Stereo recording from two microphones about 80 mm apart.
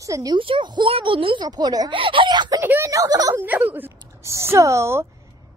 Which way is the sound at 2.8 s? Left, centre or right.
Right.